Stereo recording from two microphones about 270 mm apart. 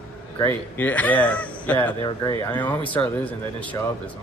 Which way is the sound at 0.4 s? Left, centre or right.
Centre.